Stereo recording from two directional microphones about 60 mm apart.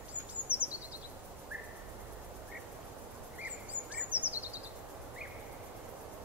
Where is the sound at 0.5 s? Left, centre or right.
Right.